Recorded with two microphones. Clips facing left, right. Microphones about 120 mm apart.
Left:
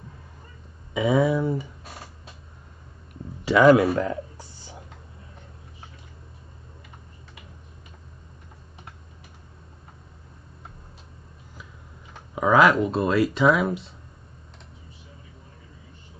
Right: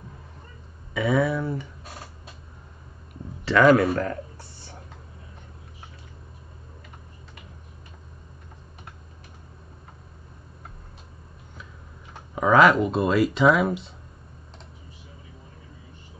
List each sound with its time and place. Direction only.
0.9 s speech: 20° left (ahead or behind)
3.4 s speech: 15° left (ahead or behind)
12.4 s speech: centre (ahead or behind)